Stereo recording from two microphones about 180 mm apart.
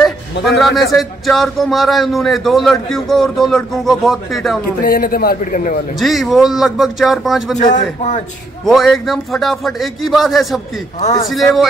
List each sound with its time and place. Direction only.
0.6 s a man's voice: centre (ahead or behind)
4.8 s a man's voice: 55° left (ahead or behind)
5.9 s a man's voice: centre (ahead or behind)
7.5 s a man's voice: 40° left (ahead or behind)
8.6 s a man's voice: centre (ahead or behind)
11.0 s a man's voice: 40° left (ahead or behind)
11.2 s a man's voice: centre (ahead or behind)